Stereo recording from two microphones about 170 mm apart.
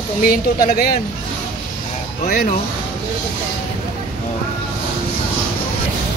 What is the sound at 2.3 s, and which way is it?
Speech, 60° left (ahead or behind).